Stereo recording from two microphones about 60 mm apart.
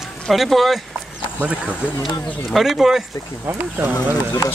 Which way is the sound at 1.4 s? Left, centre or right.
Right.